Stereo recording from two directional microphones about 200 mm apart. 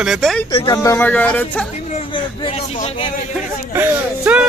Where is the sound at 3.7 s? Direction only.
10° right (ahead or behind).